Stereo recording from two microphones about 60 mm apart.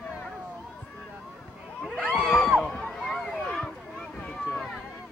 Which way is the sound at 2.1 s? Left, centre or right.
Centre.